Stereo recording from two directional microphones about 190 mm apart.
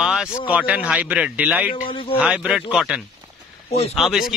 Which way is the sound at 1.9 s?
25° left (ahead or behind).